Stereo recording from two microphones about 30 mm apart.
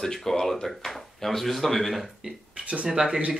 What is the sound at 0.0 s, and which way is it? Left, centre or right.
Speech, centre.